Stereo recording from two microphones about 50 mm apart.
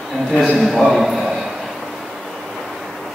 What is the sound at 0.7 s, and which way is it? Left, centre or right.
Speech, centre.